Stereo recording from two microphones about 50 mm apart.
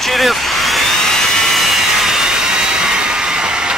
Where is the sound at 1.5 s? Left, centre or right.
Centre.